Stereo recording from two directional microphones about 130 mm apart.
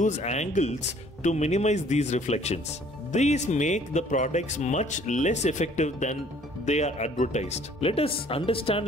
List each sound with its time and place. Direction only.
0.0 s speech: 60° left (ahead or behind)